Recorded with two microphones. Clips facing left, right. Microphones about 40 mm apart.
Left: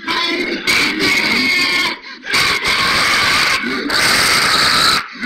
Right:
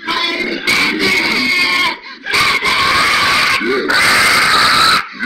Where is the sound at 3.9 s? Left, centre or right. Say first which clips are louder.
Right 3 dB; right.